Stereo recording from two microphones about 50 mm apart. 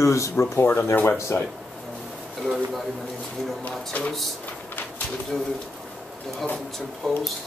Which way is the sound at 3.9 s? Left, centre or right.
Left.